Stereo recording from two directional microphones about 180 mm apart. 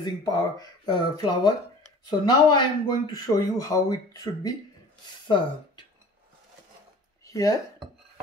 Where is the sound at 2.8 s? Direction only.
20° left (ahead or behind).